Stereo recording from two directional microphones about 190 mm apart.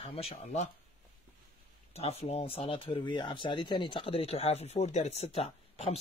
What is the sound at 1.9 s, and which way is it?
Speech, 35° left (ahead or behind).